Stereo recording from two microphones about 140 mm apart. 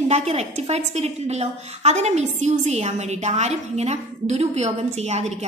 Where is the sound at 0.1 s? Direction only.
50° right (ahead or behind).